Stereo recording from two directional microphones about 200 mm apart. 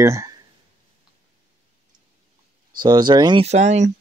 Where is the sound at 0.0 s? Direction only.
15° right (ahead or behind).